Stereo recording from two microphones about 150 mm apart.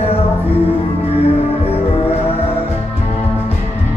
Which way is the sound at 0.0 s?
40° left (ahead or behind).